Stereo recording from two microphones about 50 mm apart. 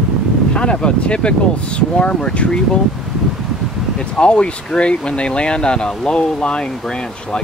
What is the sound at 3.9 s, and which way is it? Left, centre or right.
Speech, centre.